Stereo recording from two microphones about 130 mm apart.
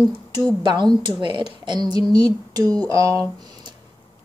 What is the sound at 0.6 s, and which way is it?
A woman's voice, 35° right (ahead or behind).